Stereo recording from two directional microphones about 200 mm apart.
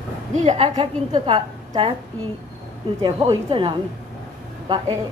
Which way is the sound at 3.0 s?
25° right (ahead or behind).